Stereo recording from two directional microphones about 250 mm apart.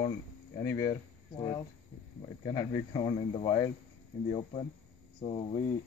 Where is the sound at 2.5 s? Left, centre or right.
Centre.